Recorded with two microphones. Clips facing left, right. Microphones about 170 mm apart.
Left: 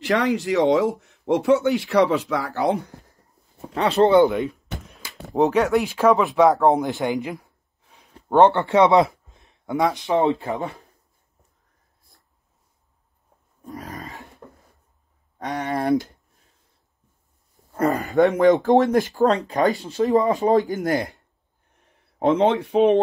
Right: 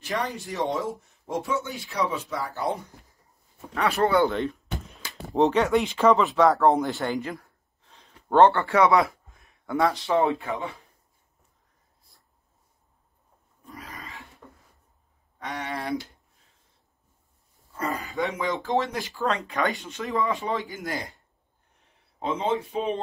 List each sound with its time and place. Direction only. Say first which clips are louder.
0.0 s speech: left 9 dB; 90° left
3.7 s speech: left 7 dB; 25° left (ahead or behind)
10.4 s speech: left 4 dB; 35° left (ahead or behind)
13.7 s roar: left 7 dB; 40° left (ahead or behind)
15.3 s speech: left 7 dB; 40° left (ahead or behind)
17.7 s speech: left 11 dB; 55° left (ahead or behind)
22.2 s speech: left 8 dB; 70° left (ahead or behind)